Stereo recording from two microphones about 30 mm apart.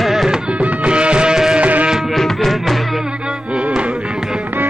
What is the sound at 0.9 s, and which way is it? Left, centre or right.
Music, right.